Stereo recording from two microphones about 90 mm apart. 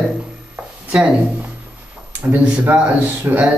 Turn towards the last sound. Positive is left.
turn(degrees=-20)  # may be behind; listen again after turning